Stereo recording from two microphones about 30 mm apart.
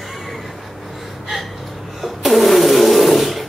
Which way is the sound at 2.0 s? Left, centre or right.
Centre.